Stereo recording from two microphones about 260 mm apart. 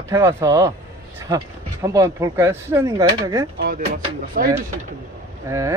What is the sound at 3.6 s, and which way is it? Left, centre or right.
Speech, right.